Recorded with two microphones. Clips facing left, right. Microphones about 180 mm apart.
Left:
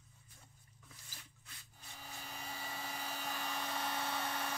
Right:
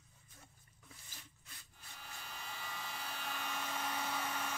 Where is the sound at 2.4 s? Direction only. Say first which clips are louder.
Left 2 dB; 35° left (ahead or behind).